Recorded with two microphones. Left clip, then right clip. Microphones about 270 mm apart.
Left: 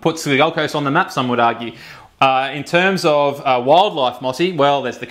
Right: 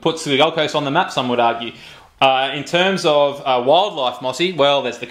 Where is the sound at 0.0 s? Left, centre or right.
Left.